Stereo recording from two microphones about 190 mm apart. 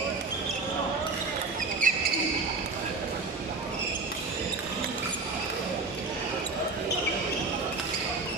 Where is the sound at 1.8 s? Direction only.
45° right (ahead or behind).